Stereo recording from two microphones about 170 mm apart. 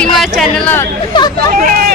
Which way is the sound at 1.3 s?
60° right (ahead or behind).